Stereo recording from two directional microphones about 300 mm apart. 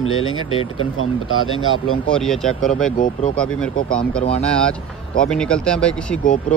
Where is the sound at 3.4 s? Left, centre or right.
Centre.